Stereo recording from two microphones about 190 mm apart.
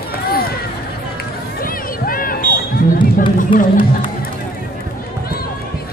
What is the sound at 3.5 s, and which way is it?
Speech, 45° left (ahead or behind).